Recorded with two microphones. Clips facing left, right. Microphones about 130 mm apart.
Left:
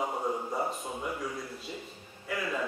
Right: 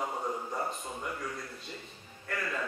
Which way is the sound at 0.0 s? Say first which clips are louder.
Left 3 dB; 10° left (ahead or behind).